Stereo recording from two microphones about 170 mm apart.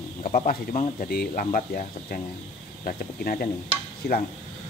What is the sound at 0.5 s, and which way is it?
Speech, 60° left (ahead or behind).